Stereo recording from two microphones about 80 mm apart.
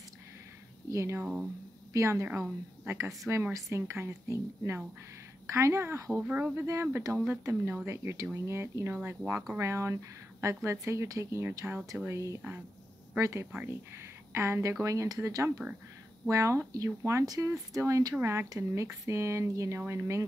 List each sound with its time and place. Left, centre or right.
0.8 s speech: right
1.2 s speech: centre
2.0 s speech: right
2.8 s speech: right
3.5 s speech: right
6.2 s speech: centre
6.5 s speech: right
8.9 s speech: centre
9.6 s speech: right
12.1 s speech: right